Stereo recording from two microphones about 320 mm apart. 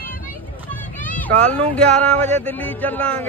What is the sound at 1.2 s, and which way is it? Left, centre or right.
Speech, centre.